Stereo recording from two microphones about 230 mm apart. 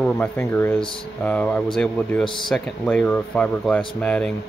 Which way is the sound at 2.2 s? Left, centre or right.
Left.